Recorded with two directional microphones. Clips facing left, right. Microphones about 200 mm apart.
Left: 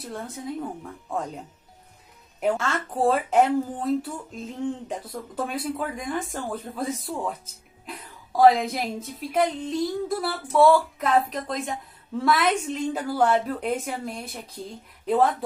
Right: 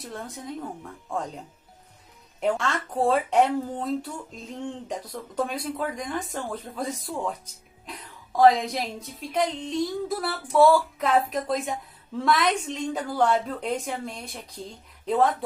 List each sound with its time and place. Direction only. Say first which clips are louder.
0.0 s a woman's voice: left 3 dB; centre (ahead or behind)
2.4 s a woman's voice: left 1 dB; 5° left (ahead or behind)